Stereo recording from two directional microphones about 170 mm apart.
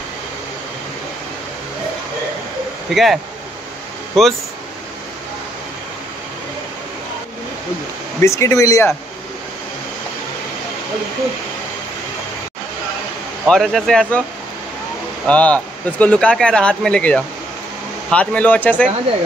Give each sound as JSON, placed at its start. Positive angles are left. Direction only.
{"t": 2.9, "sound": "speech", "side_deg": 0}
{"t": 8.2, "sound": "speech", "side_deg": 15}
{"t": 13.5, "sound": "speech", "side_deg": 0}
{"t": 15.2, "sound": "speech", "side_deg": 5}